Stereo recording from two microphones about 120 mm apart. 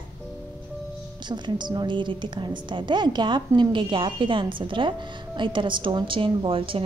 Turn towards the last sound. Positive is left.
turn(degrees=-50)  # may be behind; listen again after turning